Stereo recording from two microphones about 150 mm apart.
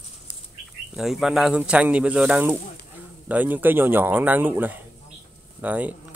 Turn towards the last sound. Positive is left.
turn(degrees=-10)  # may be behind; listen again after turning